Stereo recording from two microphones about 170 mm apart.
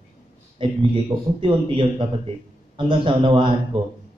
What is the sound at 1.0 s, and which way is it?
A man's voice, 30° right (ahead or behind).